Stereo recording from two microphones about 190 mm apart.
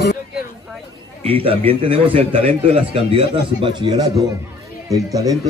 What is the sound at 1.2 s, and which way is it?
A man's voice, 30° right (ahead or behind).